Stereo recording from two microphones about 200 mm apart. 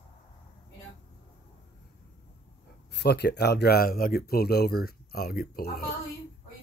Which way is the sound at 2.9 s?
55° left (ahead or behind).